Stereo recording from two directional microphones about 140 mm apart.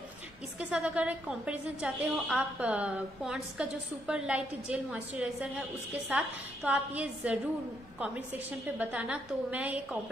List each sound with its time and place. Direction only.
0.6 s a woman's voice: 10° right (ahead or behind)